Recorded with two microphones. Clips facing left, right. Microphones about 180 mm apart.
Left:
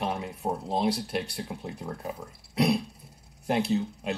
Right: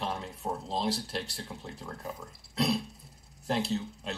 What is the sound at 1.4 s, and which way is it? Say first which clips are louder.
Speech: left 6 dB; 15° left (ahead or behind).